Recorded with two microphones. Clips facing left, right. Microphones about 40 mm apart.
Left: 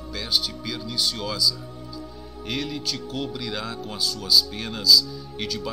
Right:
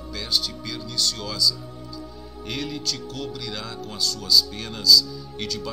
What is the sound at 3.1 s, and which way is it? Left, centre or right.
Speech, centre.